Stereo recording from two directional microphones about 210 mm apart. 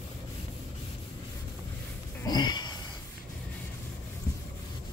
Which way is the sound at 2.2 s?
20° left (ahead or behind).